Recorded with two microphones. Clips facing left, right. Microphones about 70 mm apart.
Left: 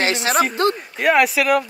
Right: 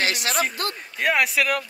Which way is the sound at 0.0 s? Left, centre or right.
Left.